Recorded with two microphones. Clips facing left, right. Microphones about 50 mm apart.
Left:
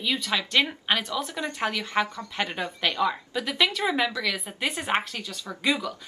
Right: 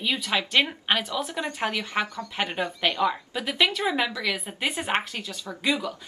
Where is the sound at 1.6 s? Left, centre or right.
Right.